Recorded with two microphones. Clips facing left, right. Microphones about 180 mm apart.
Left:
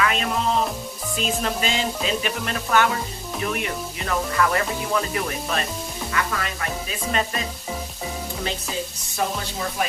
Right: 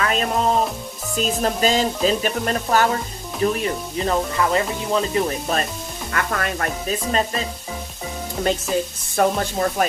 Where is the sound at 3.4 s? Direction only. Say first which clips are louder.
Right 7 dB; 30° right (ahead or behind).